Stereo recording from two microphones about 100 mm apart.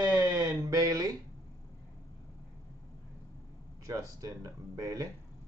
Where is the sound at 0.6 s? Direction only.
35° right (ahead or behind).